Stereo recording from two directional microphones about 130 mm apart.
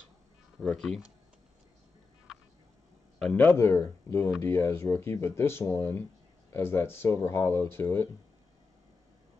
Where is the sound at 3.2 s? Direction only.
10° left (ahead or behind).